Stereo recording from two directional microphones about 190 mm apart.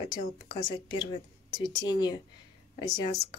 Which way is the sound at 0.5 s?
20° left (ahead or behind).